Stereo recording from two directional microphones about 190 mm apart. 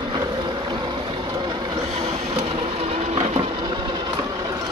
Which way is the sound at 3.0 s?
35° right (ahead or behind).